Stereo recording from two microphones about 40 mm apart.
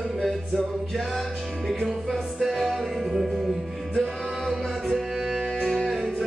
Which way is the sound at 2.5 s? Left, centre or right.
Centre.